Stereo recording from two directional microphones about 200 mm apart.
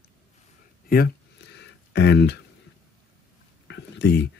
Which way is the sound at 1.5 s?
55° left (ahead or behind).